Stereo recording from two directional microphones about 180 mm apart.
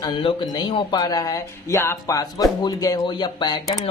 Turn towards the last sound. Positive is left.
turn(degrees=25)  # may be behind; listen again after turning